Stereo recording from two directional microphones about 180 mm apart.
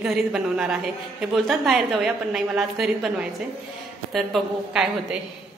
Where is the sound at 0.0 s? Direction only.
5° right (ahead or behind).